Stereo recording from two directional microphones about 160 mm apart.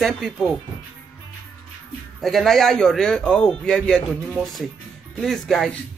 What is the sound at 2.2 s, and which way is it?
Speech, centre (ahead or behind).